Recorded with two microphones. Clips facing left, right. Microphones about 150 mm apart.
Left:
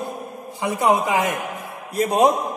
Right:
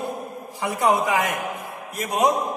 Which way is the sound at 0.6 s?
20° left (ahead or behind).